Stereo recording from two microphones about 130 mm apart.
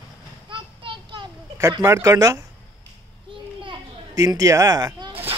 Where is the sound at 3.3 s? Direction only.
40° right (ahead or behind).